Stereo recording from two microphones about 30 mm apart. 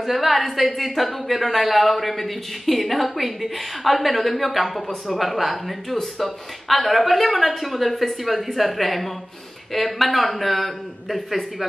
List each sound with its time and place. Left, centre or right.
0.0 s a woman's voice: centre